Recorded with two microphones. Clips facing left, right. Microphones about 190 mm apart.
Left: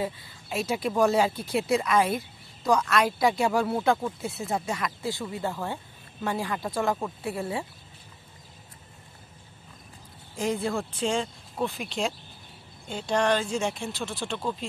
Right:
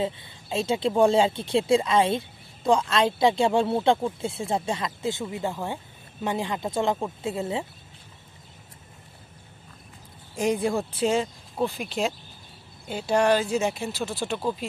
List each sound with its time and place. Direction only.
0.0 s speech: 25° right (ahead or behind)
10.3 s speech: 15° right (ahead or behind)